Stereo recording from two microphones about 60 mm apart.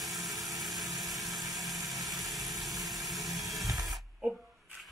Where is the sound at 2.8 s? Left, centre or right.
Centre.